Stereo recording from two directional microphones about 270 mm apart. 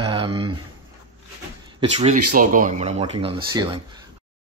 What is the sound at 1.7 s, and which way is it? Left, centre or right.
Speech, centre.